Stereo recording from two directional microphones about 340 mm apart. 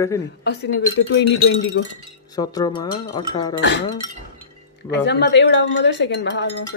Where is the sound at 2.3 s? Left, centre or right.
Centre.